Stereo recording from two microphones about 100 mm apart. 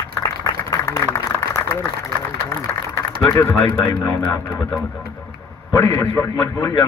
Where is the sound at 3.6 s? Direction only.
50° left (ahead or behind).